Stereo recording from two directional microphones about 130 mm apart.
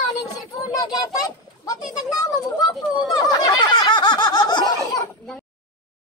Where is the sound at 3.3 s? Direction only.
35° left (ahead or behind).